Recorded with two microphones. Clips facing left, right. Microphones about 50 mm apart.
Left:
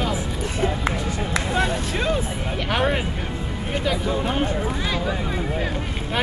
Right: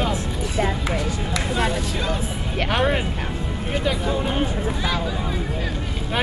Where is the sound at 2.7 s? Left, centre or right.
Centre.